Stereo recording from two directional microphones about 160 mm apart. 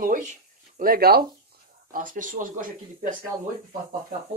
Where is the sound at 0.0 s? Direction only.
55° right (ahead or behind); by 1.2 s 70° right (ahead or behind).